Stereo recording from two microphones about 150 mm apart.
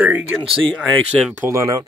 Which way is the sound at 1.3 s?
20° right (ahead or behind).